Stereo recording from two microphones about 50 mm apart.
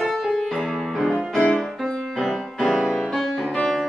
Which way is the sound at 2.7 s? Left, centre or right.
Centre.